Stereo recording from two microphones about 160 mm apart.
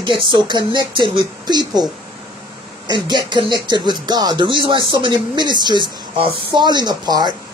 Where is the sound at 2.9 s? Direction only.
30° right (ahead or behind).